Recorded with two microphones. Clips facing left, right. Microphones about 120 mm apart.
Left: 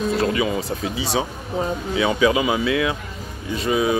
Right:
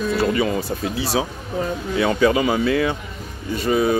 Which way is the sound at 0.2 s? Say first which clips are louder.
Right 1 dB; 5° left (ahead or behind).